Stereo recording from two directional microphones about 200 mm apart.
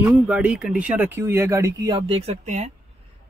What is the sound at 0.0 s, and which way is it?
Speech, 5° right (ahead or behind).